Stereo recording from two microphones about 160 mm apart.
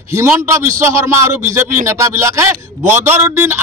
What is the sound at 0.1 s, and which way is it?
A man's voice, 15° right (ahead or behind).